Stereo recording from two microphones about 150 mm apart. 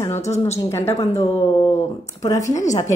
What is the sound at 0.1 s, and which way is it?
Speech, 50° left (ahead or behind).